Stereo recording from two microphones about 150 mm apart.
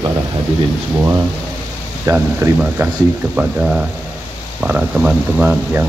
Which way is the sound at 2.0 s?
15° right (ahead or behind).